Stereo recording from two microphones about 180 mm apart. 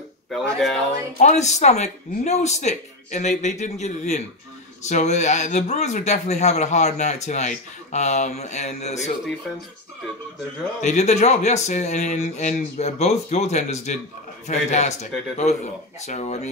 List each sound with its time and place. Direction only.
0.3 s a sound: centre (ahead or behind)
1.2 s speech: 40° left (ahead or behind)
10.8 s speech: 40° left (ahead or behind)